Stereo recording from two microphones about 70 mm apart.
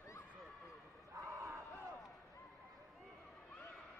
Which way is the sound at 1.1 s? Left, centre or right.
Right.